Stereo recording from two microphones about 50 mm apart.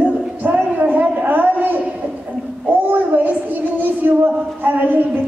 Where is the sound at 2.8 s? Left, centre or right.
Right.